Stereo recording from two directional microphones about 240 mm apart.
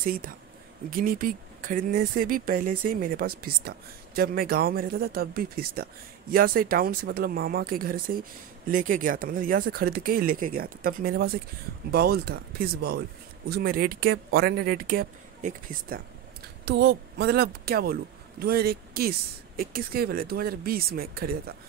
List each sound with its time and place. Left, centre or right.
0.0 s speech: right